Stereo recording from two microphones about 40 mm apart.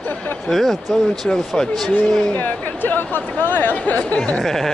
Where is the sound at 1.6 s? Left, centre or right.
Centre.